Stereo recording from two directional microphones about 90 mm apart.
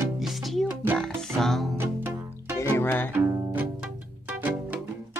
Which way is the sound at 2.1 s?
35° right (ahead or behind).